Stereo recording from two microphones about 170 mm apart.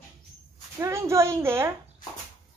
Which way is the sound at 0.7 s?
15° right (ahead or behind).